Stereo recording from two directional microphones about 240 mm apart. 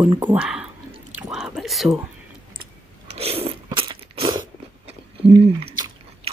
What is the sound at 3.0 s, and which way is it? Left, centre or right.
Crunch, right.